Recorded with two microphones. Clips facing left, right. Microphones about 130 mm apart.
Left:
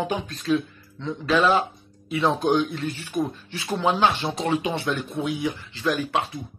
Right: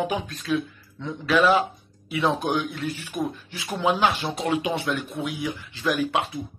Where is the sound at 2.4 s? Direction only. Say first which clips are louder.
Left 4 dB; 10° right (ahead or behind).